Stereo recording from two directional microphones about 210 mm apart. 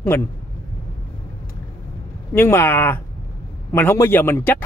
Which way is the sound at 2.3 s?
10° left (ahead or behind).